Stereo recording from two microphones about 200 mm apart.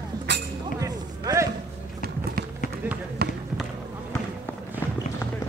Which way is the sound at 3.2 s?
55° right (ahead or behind).